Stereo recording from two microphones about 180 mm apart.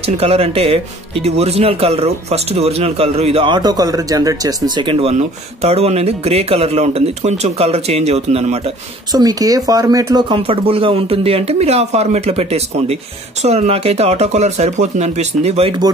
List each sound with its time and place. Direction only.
0.0 s speech: 35° right (ahead or behind)
9.1 s speech: 20° right (ahead or behind); by 15.7 s 35° right (ahead or behind)